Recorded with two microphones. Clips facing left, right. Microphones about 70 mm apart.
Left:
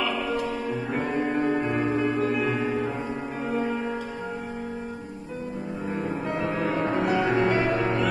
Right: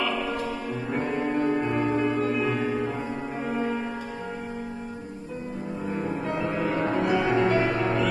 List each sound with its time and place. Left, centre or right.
0.0 s music: centre
6.0 s music: centre
6.4 s music: centre